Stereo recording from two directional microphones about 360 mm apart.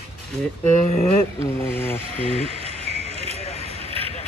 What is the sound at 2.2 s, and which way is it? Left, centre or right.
Speech, centre.